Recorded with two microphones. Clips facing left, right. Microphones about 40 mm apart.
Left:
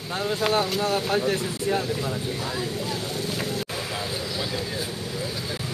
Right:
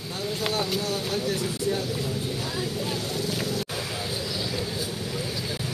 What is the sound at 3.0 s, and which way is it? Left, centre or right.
Vehicle, centre.